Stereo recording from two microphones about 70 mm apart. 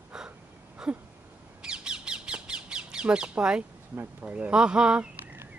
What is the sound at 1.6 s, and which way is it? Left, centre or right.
Squawk, centre.